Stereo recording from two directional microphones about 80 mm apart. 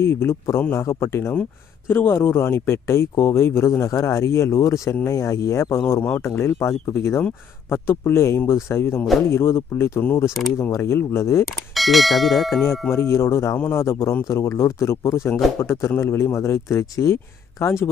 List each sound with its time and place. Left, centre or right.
0.0 s speech: left
11.7 s bell: centre
12.9 s speech: left